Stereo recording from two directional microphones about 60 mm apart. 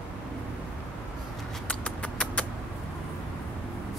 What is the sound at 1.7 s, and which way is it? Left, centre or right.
Rodents, left.